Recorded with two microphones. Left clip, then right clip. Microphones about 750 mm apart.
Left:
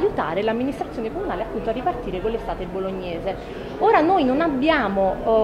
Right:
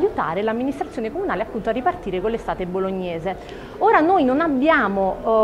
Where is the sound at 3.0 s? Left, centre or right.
Right.